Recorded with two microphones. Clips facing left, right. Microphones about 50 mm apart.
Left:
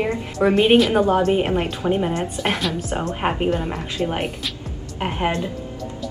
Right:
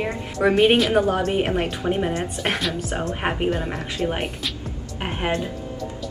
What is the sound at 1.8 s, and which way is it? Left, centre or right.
A woman's voice, centre.